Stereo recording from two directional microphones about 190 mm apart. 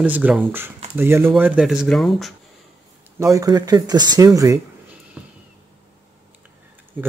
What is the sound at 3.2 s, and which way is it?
Speech, 15° right (ahead or behind).